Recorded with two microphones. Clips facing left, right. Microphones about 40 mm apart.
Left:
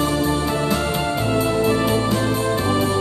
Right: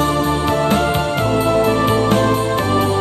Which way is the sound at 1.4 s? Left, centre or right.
Right.